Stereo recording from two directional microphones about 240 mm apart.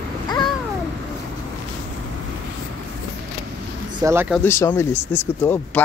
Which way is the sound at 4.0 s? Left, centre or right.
Centre.